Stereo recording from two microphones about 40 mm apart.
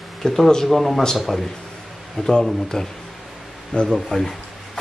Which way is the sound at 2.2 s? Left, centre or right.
Left.